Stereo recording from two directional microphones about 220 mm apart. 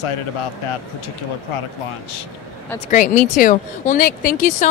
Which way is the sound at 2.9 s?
35° left (ahead or behind).